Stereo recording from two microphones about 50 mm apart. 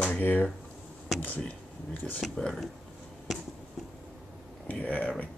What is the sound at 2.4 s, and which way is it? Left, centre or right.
Speech, centre.